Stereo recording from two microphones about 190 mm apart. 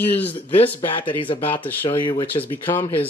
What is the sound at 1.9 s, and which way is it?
Speech, 30° left (ahead or behind).